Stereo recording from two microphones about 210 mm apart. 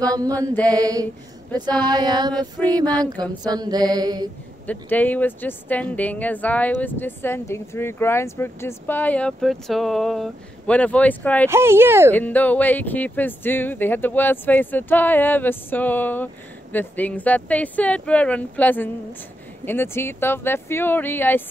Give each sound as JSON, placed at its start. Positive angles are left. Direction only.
{"t": 0.3, "sound": "speech", "side_deg": 5}
{"t": 0.7, "sound": "speech", "side_deg": -15}
{"t": 1.7, "sound": "mantra", "side_deg": -20}
{"t": 4.6, "sound": "speech", "side_deg": 10}
{"t": 11.4, "sound": "speech", "side_deg": -10}
{"t": 12.1, "sound": "speech", "side_deg": 10}